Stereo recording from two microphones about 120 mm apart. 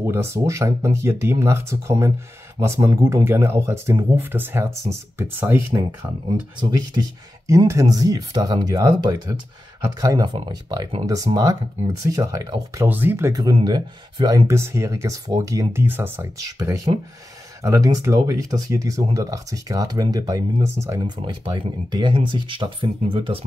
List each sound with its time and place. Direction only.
0.0 s speech: 20° right (ahead or behind)
6.6 s speech: 35° right (ahead or behind)
12.8 s speech: 15° right (ahead or behind)
13.3 s speech: 35° right (ahead or behind)
14.5 s speech: 25° right (ahead or behind)
15.7 s speech: 15° right (ahead or behind)
16.3 s speech: 30° right (ahead or behind)
21.0 s speech: 40° right (ahead or behind)